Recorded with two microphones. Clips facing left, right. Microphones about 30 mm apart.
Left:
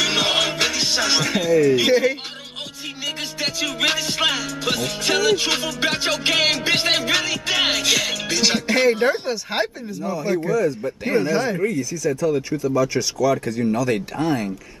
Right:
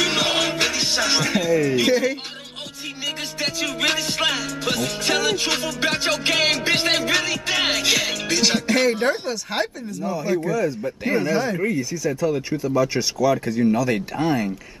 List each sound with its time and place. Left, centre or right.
0.0 s music: centre
1.9 s speech: centre
3.3 s music: centre
9.3 s speech: centre
10.5 s music: centre
11.5 s music: centre
11.9 s speech: centre